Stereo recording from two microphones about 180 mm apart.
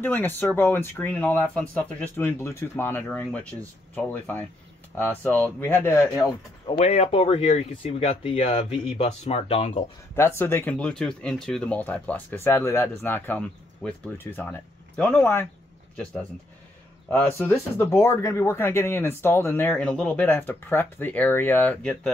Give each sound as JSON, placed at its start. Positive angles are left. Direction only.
{"t": 0.0, "sound": "speech", "side_deg": 10}
{"t": 6.1, "sound": "speech", "side_deg": 25}
{"t": 10.1, "sound": "speech", "side_deg": 15}
{"t": 17.1, "sound": "speech", "side_deg": 10}